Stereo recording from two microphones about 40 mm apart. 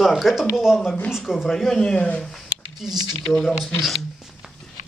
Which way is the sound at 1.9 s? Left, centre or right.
Left.